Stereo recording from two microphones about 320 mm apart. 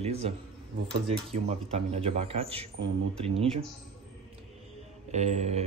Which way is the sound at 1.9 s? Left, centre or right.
Centre.